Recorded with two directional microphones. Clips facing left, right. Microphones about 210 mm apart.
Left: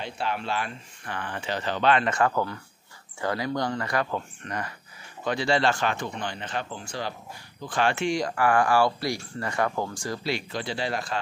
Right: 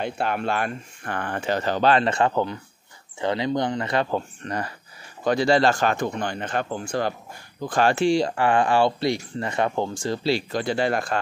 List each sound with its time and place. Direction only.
0.0 s speech: 55° right (ahead or behind)
7.6 s speech: 40° right (ahead or behind)
10.5 s speech: 50° right (ahead or behind)